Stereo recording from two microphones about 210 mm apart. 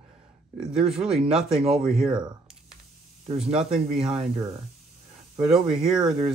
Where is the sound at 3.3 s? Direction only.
5° right (ahead or behind).